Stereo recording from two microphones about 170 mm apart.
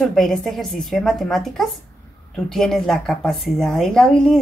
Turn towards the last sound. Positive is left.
turn(degrees=5)  # may be behind; listen again after turning